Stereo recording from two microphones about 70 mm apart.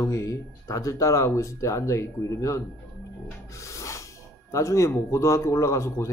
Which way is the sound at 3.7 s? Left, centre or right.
Left.